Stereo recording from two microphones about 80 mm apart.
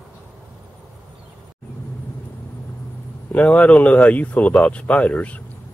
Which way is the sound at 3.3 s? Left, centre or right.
Centre.